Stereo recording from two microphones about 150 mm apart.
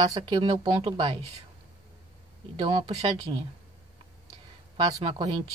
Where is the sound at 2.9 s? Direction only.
45° right (ahead or behind).